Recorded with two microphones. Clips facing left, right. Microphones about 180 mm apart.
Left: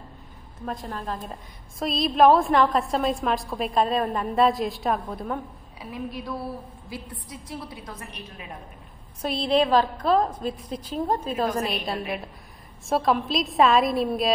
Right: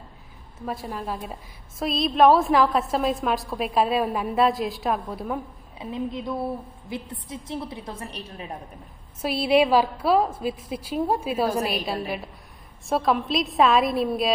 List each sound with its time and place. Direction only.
0.7 s a woman's voice: 5° right (ahead or behind)
5.8 s a woman's voice: 20° right (ahead or behind)
9.2 s a woman's voice: 5° right (ahead or behind)